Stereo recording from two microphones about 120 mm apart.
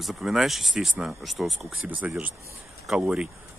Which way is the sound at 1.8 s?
15° right (ahead or behind).